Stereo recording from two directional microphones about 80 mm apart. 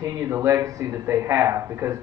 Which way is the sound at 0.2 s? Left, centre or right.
Right.